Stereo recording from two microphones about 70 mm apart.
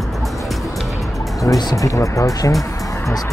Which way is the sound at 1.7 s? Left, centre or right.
Left.